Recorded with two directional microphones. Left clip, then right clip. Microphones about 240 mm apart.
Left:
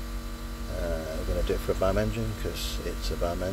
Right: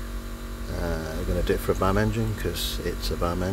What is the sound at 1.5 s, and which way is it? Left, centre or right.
Speech, centre.